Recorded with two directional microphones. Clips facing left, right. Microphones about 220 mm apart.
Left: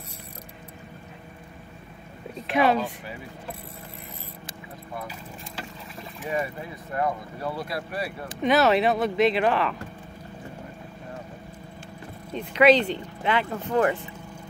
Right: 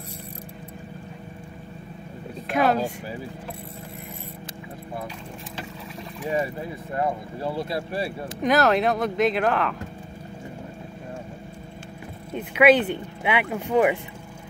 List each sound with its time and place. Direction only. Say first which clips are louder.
2.4 s speech: even; centre (ahead or behind)
6.3 s speech: right 3 dB; 30° right (ahead or behind)
8.4 s speech: even; centre (ahead or behind)
12.4 s speech: right 1 dB; 5° right (ahead or behind)